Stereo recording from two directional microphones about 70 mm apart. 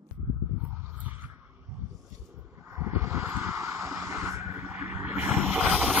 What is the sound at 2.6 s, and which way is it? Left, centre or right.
Vehicle, right.